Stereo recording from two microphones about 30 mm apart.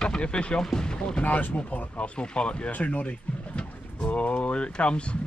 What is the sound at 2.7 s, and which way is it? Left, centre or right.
Speech, left.